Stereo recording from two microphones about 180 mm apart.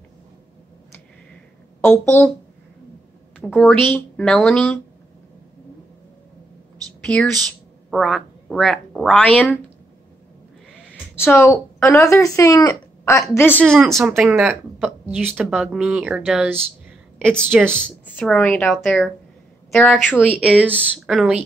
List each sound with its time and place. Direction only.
1.9 s a woman's voice: 5° left (ahead or behind)
3.3 s speech: centre (ahead or behind)
7.0 s a sound: 5° left (ahead or behind)
7.9 s speech: centre (ahead or behind)
11.1 s a woman's voice: 15° left (ahead or behind)
14.1 s speech: centre (ahead or behind)
17.4 s speech: 5° left (ahead or behind)